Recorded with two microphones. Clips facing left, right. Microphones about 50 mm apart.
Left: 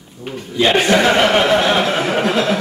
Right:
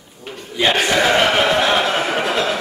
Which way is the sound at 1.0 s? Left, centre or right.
Centre.